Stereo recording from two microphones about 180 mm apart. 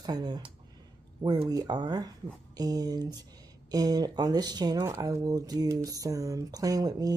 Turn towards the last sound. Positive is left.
turn(degrees=-20)  # may be behind; listen again after turning